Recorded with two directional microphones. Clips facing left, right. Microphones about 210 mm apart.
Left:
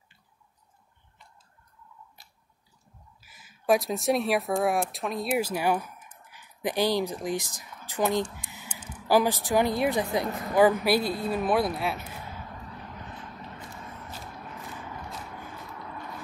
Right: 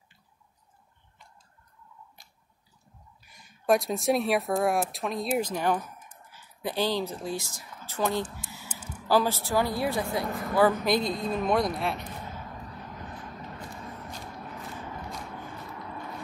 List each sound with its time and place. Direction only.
3.2 s speech: 5° left (ahead or behind)